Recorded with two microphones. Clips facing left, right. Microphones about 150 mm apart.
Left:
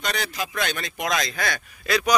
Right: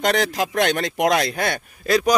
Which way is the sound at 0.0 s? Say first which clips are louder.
Right 8 dB; 90° right.